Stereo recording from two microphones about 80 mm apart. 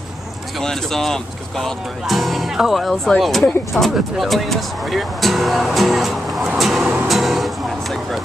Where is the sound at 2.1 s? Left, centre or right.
Centre.